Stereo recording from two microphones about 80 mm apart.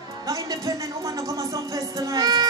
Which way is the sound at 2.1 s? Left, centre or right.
Right.